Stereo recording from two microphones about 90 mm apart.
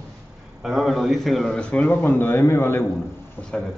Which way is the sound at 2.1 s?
25° left (ahead or behind).